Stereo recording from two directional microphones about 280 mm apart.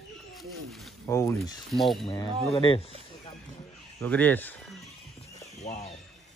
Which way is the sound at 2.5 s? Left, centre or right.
Centre.